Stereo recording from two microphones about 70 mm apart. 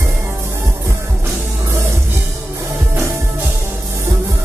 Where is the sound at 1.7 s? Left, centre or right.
Right.